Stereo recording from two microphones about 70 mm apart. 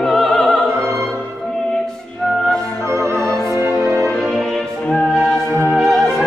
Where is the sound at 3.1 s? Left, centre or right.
Centre.